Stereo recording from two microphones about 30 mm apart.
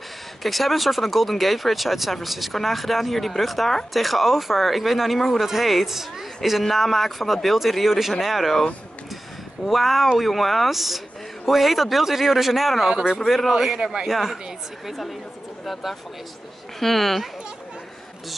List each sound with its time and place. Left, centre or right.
0.4 s speech: centre
6.7 s speech: centre
9.7 s speech: centre
12.9 s speech: right
13.5 s speech: centre